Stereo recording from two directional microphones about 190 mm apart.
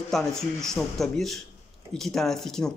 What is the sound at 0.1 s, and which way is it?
Speech, centre (ahead or behind).